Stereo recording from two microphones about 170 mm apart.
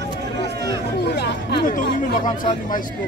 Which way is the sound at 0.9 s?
75° left (ahead or behind).